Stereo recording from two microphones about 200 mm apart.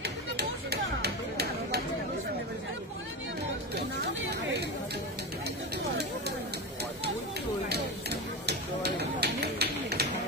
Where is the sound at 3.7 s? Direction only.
55° right (ahead or behind).